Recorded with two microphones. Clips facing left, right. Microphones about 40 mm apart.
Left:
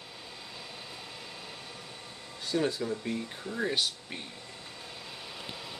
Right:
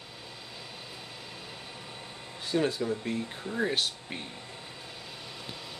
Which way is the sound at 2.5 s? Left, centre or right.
Centre.